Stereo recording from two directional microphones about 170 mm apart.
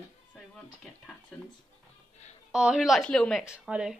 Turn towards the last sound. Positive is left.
turn(degrees=-5)  # may be behind; listen again after turning